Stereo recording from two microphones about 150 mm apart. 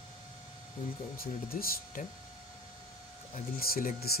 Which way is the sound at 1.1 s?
75° left (ahead or behind).